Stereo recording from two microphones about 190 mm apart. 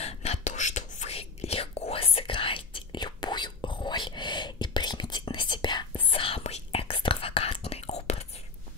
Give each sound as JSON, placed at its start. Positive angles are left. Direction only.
{"t": 0.0, "sound": "whispering", "side_deg": 35}